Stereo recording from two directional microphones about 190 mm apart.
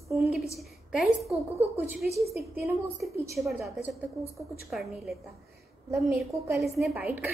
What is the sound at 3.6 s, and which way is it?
A woman's voice, centre (ahead or behind).